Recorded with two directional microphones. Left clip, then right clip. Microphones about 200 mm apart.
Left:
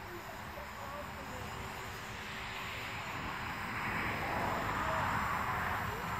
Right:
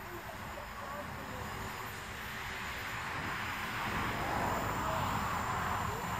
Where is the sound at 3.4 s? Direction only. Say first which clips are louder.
Right 2 dB; 20° right (ahead or behind).